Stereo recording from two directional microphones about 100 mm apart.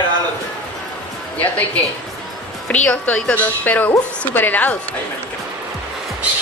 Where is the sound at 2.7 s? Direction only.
15° left (ahead or behind).